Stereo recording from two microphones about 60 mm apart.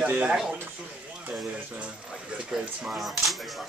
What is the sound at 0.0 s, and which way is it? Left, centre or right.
Speech, right.